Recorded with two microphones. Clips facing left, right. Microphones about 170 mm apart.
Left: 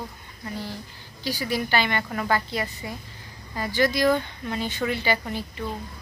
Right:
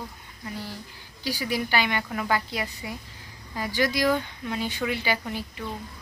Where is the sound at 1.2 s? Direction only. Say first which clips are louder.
Left 1 dB; 10° right (ahead or behind).